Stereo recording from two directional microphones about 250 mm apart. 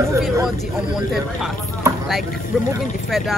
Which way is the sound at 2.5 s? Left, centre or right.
Centre.